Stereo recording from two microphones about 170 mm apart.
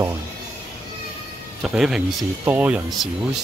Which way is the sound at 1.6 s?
Centre (ahead or behind).